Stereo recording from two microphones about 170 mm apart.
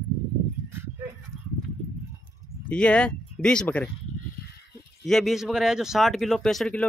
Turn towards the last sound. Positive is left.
turn(degrees=5)  # may be behind; listen again after turning